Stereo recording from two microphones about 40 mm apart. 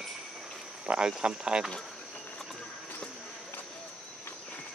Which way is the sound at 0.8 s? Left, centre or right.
Right.